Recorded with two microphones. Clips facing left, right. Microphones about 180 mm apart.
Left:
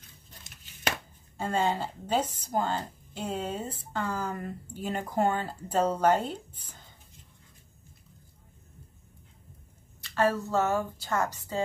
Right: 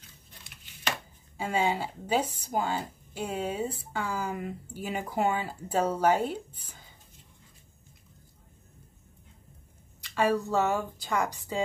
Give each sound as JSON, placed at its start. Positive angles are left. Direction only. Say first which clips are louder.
{"t": 0.5, "sound": "chopping", "louder": "even", "side_deg": 45}
{"t": 1.4, "sound": "speech", "louder": "even", "side_deg": -10}
{"t": 10.0, "sound": "speech", "louder": "even", "side_deg": -15}